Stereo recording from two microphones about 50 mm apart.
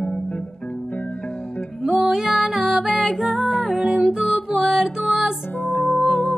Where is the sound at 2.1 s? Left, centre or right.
Centre.